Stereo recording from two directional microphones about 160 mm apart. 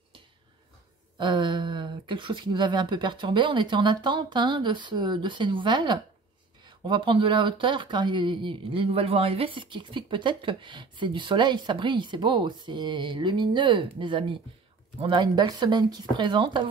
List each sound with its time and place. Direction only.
1.1 s speech: 30° right (ahead or behind)